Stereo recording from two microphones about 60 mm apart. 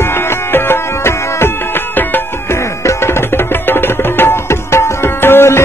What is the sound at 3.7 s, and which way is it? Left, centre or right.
Tabla, left.